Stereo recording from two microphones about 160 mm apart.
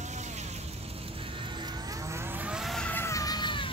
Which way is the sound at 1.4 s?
25° right (ahead or behind).